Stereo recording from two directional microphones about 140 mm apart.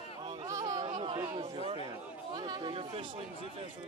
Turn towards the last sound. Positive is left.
turn(degrees=-40)  # may be behind; listen again after turning